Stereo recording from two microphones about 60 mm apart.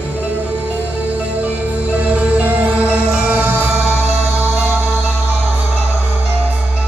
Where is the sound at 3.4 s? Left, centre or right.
Right.